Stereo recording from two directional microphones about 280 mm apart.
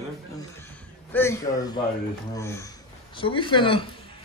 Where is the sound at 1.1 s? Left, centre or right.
Centre.